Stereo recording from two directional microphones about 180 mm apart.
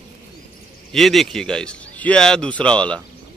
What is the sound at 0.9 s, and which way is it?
Speech, centre (ahead or behind).